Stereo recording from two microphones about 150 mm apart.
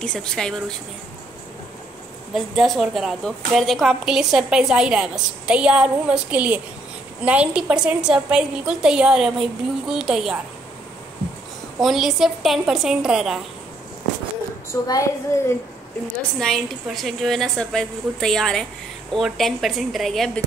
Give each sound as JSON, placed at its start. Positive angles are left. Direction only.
{"t": 0.0, "sound": "a woman's voice", "side_deg": 5}
{"t": 2.3, "sound": "a woman's voice", "side_deg": 0}
{"t": 11.8, "sound": "a woman's voice", "side_deg": 0}
{"t": 14.7, "sound": "a woman's voice", "side_deg": 20}
{"t": 16.3, "sound": "a woman's voice", "side_deg": 0}